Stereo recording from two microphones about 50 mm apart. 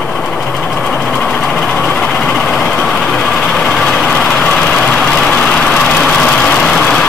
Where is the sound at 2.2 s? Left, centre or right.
Centre.